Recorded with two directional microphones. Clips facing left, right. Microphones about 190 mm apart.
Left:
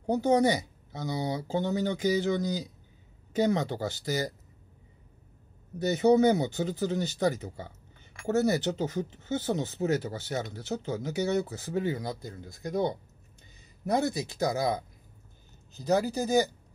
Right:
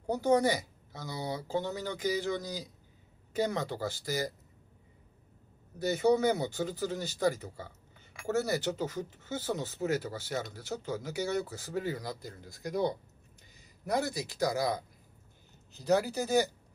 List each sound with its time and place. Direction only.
0.0 s speech: 20° left (ahead or behind)
5.8 s speech: 20° left (ahead or behind)
15.8 s speech: 15° left (ahead or behind)